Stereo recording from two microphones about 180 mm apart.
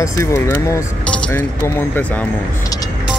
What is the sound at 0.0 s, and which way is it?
Speech, 15° left (ahead or behind).